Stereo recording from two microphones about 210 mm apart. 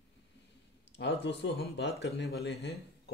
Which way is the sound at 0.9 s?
60° left (ahead or behind).